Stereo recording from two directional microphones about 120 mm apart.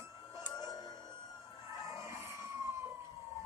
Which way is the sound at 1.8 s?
25° right (ahead or behind).